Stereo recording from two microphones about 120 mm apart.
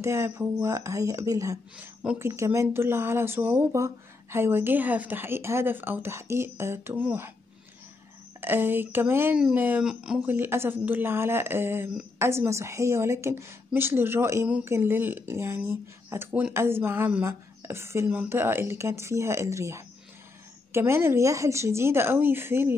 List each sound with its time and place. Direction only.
0.0 s a woman's voice: 20° right (ahead or behind)
8.4 s speech: 15° right (ahead or behind)
10.3 s a woman's voice: 20° right (ahead or behind)